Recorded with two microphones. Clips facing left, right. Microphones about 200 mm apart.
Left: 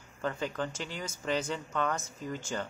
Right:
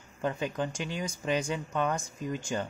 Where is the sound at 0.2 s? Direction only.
20° right (ahead or behind).